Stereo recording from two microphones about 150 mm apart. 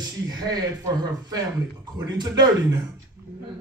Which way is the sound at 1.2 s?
25° right (ahead or behind).